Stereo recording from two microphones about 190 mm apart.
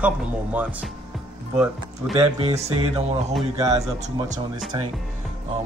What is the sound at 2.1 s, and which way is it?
Speech, 30° right (ahead or behind).